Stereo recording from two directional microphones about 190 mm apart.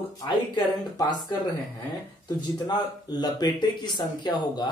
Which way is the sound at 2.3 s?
20° left (ahead or behind).